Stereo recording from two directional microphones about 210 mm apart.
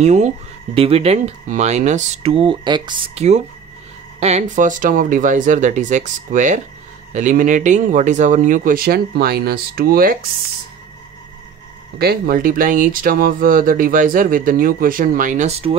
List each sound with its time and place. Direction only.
0.0 s speech: 35° right (ahead or behind)
12.0 s speech: 45° right (ahead or behind)